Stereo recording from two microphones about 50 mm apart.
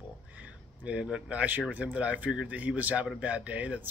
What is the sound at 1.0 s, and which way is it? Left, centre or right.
Speech, right.